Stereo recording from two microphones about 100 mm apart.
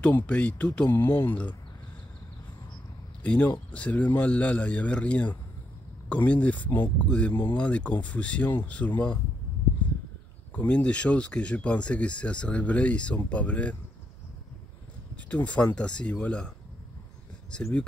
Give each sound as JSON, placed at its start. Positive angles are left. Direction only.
{"t": 0.0, "sound": "speech", "side_deg": 10}
{"t": 3.2, "sound": "speech", "side_deg": 15}
{"t": 10.5, "sound": "speech", "side_deg": 15}
{"t": 15.2, "sound": "speech", "side_deg": 10}